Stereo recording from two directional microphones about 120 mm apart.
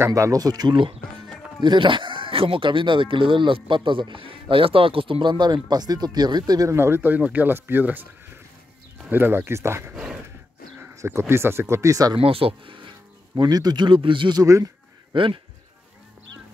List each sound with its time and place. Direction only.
0.0 s speech: 25° right (ahead or behind)
9.1 s speech: 20° right (ahead or behind)
12.2 s speech: 50° right (ahead or behind)
13.4 s speech: 35° right (ahead or behind)
14.4 s speech: 30° right (ahead or behind)
15.1 s speech: 45° right (ahead or behind)